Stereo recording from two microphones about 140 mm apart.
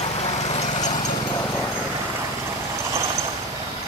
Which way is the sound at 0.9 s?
30° left (ahead or behind).